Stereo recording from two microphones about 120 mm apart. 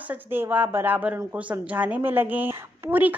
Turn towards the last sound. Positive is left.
turn(degrees=-15)  # may be behind; listen again after turning